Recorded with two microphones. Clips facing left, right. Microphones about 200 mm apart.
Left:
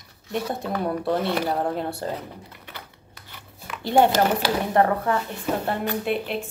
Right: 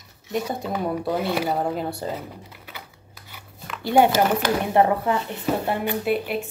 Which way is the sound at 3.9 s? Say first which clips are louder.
Right 1 dB; 10° right (ahead or behind).